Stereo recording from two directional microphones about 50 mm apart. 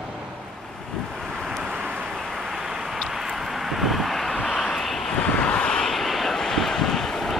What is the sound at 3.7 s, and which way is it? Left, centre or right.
Vehicle, centre.